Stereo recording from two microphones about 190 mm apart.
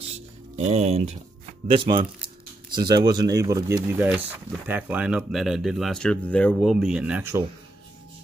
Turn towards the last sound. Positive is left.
turn(degrees=-10)  # may be behind; listen again after turning